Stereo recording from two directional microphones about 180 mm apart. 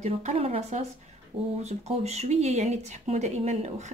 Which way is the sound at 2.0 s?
35° right (ahead or behind).